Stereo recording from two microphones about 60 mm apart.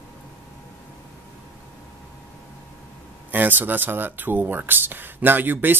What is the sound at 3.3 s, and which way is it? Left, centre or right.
Speech, right.